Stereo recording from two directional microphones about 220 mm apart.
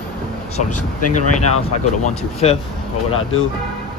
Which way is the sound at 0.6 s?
90° left.